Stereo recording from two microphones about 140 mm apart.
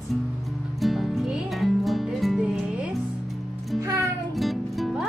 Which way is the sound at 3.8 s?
20° right (ahead or behind).